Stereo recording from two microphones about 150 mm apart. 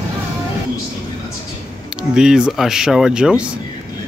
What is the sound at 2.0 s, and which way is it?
Speech, 5° right (ahead or behind).